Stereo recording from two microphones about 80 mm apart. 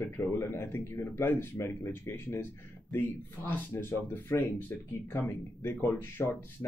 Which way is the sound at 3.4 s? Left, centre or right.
Left.